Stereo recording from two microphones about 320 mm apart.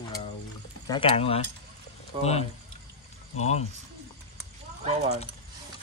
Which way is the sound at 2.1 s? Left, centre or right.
Centre.